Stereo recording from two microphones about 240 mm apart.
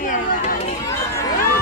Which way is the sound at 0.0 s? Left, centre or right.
Left.